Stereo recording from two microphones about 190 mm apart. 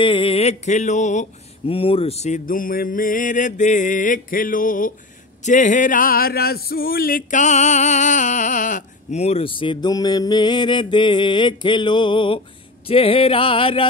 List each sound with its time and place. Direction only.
0.0 s mantra: 25° left (ahead or behind)
1.7 s music: 30° left (ahead or behind); by 4.9 s 45° left (ahead or behind)
5.4 s a sound: 40° left (ahead or behind); by 12.4 s 25° left (ahead or behind)
12.8 s music: 30° left (ahead or behind)